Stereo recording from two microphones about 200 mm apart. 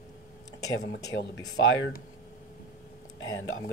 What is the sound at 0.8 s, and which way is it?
Speech, 55° left (ahead or behind).